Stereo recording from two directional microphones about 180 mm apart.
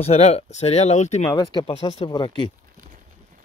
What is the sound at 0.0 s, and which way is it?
Speech, 35° left (ahead or behind).